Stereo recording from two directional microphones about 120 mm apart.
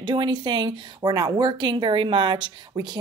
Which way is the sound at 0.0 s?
40° right (ahead or behind).